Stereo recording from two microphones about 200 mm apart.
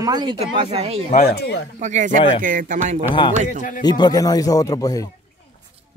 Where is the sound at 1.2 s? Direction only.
55° left (ahead or behind).